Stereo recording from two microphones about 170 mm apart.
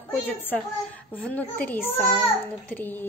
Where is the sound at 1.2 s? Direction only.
10° left (ahead or behind).